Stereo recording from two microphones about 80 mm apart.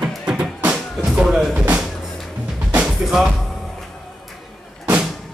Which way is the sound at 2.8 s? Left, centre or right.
Centre.